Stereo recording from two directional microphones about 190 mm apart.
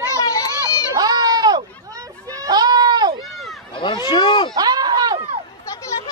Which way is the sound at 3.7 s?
25° left (ahead or behind).